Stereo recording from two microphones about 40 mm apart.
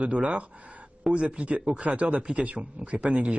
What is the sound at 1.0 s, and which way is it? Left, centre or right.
Speech, right.